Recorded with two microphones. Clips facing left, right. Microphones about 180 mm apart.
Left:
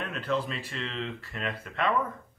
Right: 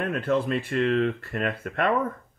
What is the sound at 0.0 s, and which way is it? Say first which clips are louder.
Speech: right 6 dB; 55° right (ahead or behind).